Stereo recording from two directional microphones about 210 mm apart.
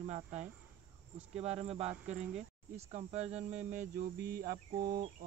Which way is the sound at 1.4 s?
30° right (ahead or behind).